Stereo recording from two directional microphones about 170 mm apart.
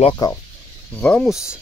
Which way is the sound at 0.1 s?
20° left (ahead or behind).